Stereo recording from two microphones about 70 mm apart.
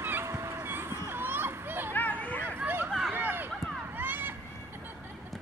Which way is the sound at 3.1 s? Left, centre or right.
Right.